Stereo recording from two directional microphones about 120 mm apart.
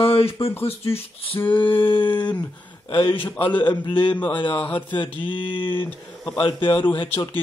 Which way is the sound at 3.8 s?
40° left (ahead or behind).